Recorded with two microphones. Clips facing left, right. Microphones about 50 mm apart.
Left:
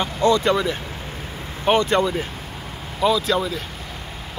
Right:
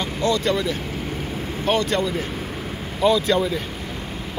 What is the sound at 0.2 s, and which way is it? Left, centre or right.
Speech, left.